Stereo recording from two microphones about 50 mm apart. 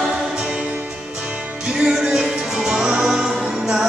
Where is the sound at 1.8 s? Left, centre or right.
Centre.